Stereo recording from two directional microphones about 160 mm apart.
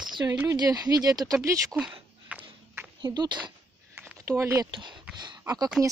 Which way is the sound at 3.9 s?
15° right (ahead or behind).